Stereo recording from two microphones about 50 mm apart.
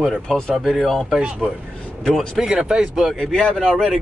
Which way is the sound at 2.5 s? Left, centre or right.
Centre.